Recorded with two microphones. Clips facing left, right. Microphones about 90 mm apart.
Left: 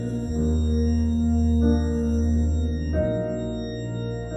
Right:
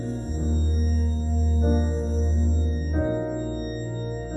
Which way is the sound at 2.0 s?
45° left (ahead or behind).